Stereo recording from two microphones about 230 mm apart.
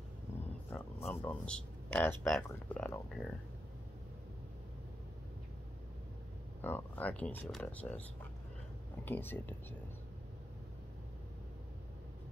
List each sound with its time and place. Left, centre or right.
0.7 s speech: centre
6.6 s speech: centre